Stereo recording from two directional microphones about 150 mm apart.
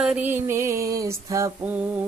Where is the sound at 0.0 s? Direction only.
10° right (ahead or behind).